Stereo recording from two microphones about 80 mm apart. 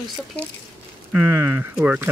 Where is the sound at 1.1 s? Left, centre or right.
Right.